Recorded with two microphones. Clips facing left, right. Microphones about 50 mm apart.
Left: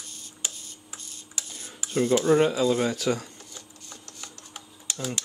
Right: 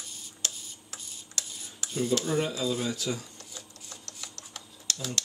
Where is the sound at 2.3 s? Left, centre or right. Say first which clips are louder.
Left 8 dB; left.